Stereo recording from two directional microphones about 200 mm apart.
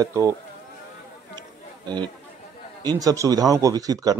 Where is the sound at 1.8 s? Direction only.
20° right (ahead or behind).